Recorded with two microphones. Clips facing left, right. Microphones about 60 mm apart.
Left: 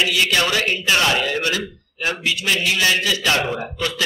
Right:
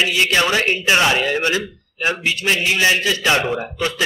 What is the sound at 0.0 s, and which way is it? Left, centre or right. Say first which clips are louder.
A man's voice: right 2 dB; right.